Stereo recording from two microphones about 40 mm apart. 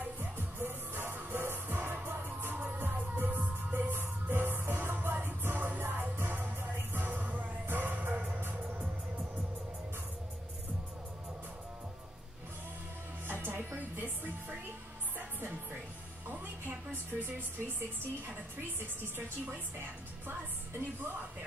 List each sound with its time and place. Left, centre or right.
0.2 s music: right
1.1 s music: right
2.5 s music: right
5.7 s music: right
7.2 s music: right
7.6 s music: right
13.3 s music: right
17.2 s a woman's voice: right